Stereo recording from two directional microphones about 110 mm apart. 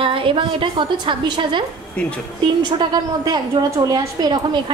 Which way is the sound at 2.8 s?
40° right (ahead or behind).